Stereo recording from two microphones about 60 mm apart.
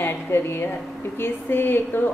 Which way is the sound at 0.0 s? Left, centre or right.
Left.